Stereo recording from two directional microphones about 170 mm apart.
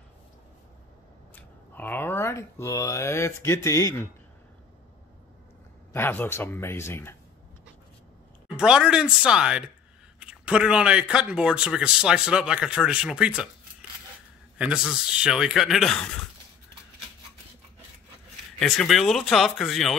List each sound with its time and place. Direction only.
1.3 s speech: 10° left (ahead or behind)
5.9 s speech: 10° left (ahead or behind)
8.5 s speech: 5° right (ahead or behind)
14.6 s speech: 5° right (ahead or behind)
18.6 s speech: centre (ahead or behind)